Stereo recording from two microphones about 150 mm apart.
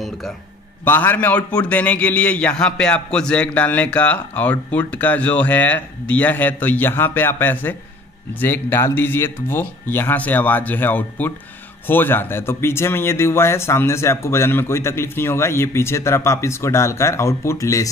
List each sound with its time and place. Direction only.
0.8 s a man's voice: 15° left (ahead or behind)